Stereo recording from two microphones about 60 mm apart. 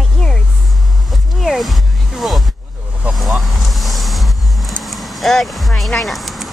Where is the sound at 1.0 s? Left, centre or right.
Centre.